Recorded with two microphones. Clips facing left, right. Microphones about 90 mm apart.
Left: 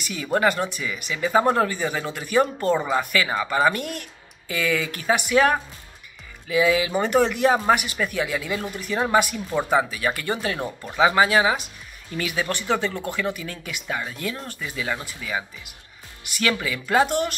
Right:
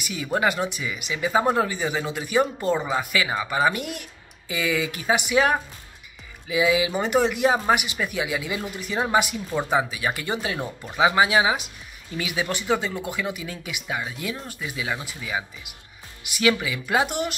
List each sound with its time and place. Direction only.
0.0 s speech: 15° right (ahead or behind)